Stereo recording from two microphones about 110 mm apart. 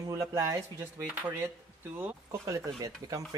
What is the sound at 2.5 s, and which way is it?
Speech, 30° right (ahead or behind).